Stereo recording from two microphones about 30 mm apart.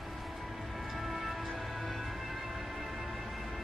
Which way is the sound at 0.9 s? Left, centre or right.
Centre.